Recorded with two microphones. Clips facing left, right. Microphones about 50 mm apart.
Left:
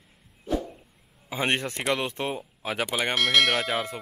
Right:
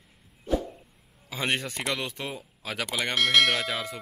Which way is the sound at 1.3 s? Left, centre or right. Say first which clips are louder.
Left 2 dB; left.